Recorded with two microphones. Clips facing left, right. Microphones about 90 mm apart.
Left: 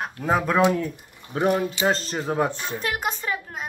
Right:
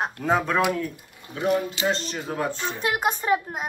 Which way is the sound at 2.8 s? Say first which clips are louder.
Right 3 dB; 10° right (ahead or behind).